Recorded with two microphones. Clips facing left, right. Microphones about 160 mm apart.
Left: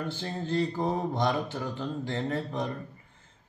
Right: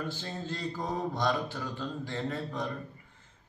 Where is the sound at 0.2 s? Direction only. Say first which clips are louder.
Left 7 dB; 25° left (ahead or behind).